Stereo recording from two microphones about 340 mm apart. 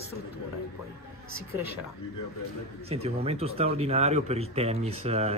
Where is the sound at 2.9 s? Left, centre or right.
Centre.